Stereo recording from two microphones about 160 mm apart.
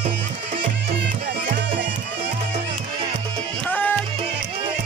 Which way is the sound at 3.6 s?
10° left (ahead or behind).